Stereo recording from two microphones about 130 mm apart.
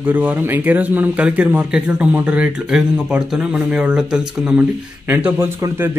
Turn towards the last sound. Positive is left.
turn(degrees=-20)  # may be behind; listen again after turning